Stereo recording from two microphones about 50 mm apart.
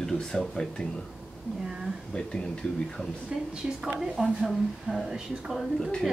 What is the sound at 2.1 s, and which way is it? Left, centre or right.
Speech, centre.